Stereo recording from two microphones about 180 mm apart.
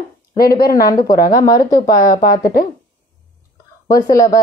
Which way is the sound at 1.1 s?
50° left (ahead or behind).